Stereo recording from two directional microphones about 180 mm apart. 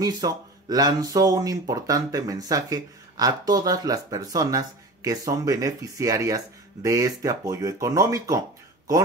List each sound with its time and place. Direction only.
0.0 s speech: 20° right (ahead or behind)